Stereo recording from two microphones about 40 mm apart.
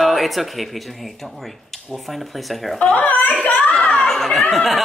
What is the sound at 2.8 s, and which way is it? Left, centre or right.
Speech, left.